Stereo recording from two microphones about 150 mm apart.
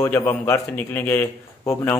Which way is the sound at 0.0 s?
15° left (ahead or behind).